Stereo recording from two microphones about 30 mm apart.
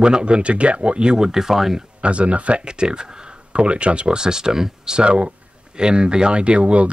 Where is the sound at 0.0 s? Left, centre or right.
Right.